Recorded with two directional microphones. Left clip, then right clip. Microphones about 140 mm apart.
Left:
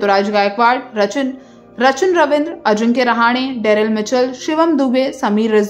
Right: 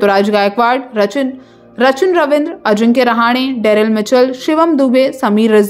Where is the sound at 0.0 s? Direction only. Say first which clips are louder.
Right 3 dB; 45° right (ahead or behind).